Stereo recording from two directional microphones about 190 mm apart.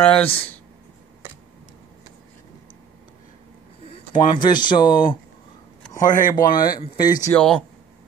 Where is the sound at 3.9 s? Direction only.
25° left (ahead or behind).